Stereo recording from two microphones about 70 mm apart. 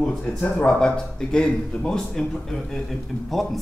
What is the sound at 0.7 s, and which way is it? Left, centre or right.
A man's voice, centre.